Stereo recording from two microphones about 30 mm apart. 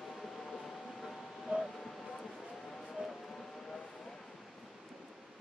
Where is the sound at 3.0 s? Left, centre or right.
Centre.